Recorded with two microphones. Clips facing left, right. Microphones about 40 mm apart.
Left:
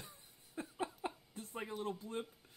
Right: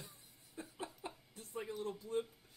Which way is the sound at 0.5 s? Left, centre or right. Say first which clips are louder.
Left 5 dB; left.